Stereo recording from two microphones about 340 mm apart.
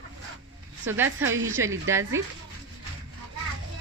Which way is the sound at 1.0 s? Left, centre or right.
Right.